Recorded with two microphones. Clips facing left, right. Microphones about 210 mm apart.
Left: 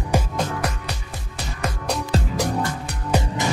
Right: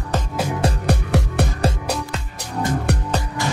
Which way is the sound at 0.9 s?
65° right (ahead or behind).